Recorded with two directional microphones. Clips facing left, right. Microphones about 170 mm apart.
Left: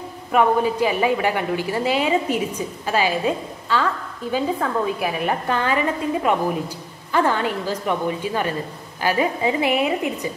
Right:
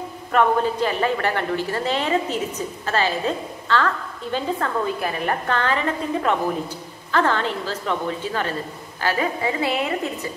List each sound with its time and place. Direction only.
0.3 s a woman's voice: 10° left (ahead or behind)